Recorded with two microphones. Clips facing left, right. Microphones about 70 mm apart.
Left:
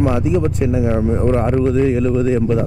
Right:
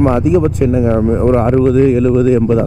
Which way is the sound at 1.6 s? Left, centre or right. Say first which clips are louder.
Right 5 dB; right.